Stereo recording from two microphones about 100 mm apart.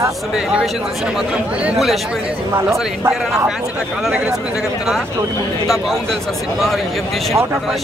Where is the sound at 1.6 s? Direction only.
5° right (ahead or behind).